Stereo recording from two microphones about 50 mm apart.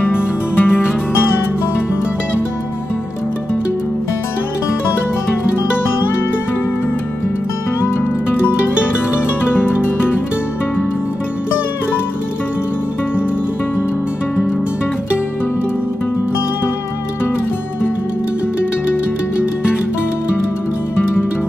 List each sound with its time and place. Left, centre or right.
0.0 s music: left
9.5 s music: left